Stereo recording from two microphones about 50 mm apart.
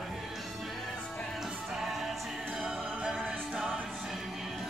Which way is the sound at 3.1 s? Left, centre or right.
Centre.